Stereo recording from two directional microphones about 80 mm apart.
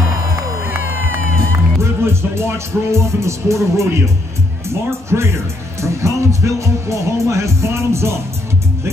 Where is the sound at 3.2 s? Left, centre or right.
Right.